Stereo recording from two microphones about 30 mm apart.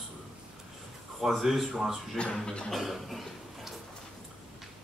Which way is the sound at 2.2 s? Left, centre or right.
Left.